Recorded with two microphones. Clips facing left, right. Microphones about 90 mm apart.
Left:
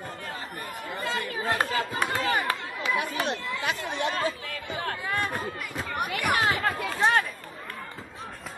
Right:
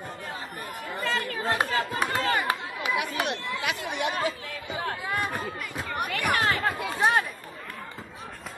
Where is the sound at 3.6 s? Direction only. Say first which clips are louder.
Left 1 dB; 35° left (ahead or behind).